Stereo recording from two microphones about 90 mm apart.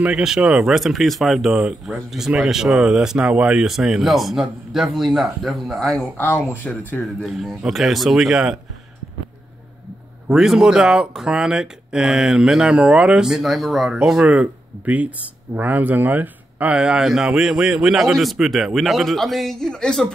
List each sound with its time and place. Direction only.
0.0 s speech: 10° right (ahead or behind)
1.6 s speech: 10° right (ahead or behind); by 6.0 s 5° left (ahead or behind)
6.5 s speech: 20° left (ahead or behind)
7.2 s speech: centre (ahead or behind)
10.2 s speech: 5° right (ahead or behind)
16.7 s speech: 10° right (ahead or behind); by 20.1 s 10° left (ahead or behind)